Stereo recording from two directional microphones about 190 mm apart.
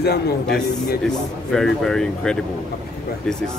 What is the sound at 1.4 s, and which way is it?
Speech, 5° left (ahead or behind).